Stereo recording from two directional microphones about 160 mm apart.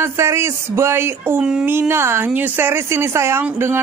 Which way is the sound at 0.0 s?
15° right (ahead or behind).